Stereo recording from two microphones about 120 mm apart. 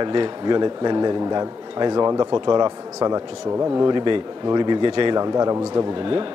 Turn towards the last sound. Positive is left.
turn(degrees=-25)  # may be behind; listen again after turning